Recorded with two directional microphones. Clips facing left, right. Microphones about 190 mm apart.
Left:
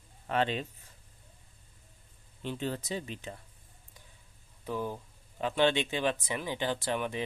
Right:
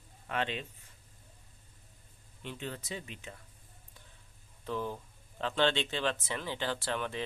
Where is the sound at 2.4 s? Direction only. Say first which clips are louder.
Left 6 dB; 35° left (ahead or behind).